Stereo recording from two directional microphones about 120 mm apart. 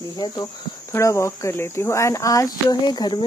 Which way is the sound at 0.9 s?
25° left (ahead or behind).